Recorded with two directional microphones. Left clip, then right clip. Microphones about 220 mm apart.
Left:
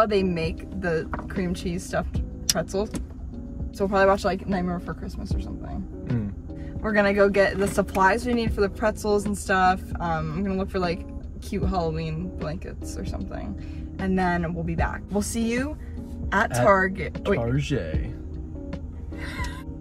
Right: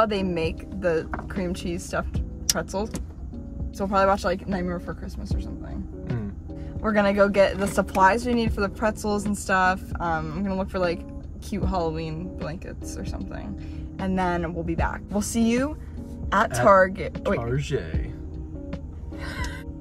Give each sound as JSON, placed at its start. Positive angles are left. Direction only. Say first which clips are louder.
{"t": 0.0, "sound": "speech", "louder": "left 1 dB", "side_deg": -15}
{"t": 3.7, "sound": "speech", "louder": "left 1 dB", "side_deg": -15}
{"t": 6.8, "sound": "speech", "louder": "even", "side_deg": -15}
{"t": 17.1, "sound": "speech", "louder": "left 1 dB", "side_deg": 5}